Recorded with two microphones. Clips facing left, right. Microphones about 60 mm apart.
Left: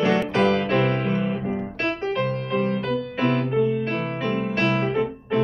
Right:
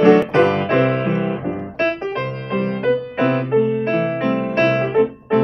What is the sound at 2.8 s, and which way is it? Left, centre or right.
Music, right.